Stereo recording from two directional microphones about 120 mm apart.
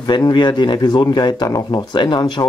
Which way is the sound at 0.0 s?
40° left (ahead or behind).